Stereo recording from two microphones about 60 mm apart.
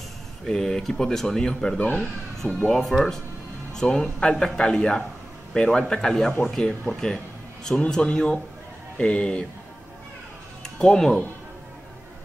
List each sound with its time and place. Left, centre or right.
0.5 s speech: centre
10.8 s speech: centre